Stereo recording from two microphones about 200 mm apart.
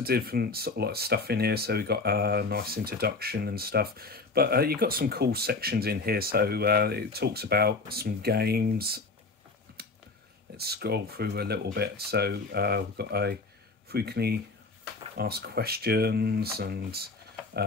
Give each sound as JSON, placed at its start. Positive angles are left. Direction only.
{"t": 0.0, "sound": "speech", "side_deg": -50}
{"t": 9.8, "sound": "a sound", "side_deg": -50}
{"t": 10.6, "sound": "speech", "side_deg": -55}